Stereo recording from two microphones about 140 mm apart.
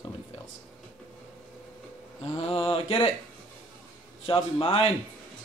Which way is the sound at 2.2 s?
45° left (ahead or behind).